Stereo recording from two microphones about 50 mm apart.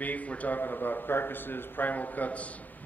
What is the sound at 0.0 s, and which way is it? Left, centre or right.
A man's voice, left.